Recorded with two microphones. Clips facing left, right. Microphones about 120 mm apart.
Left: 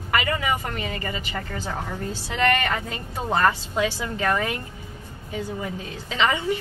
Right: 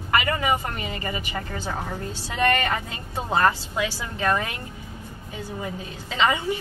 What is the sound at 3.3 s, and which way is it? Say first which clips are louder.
Speech: even; 15° right (ahead or behind).